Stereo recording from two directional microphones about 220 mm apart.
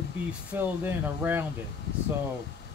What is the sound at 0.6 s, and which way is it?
Speech, 10° right (ahead or behind).